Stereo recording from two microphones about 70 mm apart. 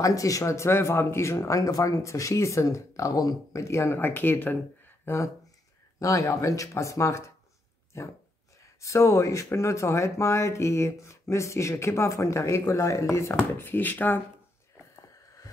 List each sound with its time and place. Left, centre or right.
0.0 s speech: left
8.8 s speech: left
13.4 s speech: left